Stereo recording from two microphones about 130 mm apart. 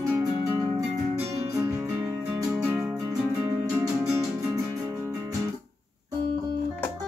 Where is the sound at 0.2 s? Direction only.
25° right (ahead or behind).